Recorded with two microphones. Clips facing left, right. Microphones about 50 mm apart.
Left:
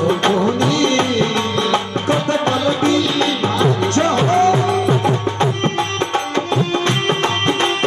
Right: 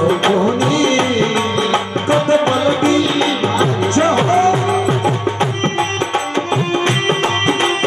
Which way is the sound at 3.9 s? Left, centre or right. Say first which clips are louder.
Right 2 dB; centre.